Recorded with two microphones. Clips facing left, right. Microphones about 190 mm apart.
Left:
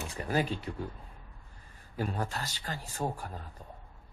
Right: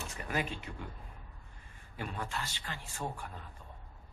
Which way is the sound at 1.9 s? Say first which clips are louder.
Left 5 dB; 40° left (ahead or behind).